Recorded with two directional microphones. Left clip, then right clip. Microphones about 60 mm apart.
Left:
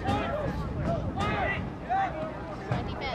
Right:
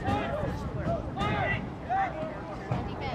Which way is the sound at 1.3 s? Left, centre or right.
Centre.